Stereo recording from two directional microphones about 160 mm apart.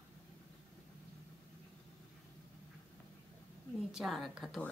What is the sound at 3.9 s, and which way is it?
Speech, centre (ahead or behind).